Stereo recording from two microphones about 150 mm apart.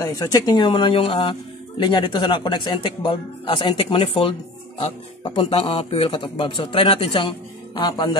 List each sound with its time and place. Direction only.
0.0 s speech: 25° left (ahead or behind)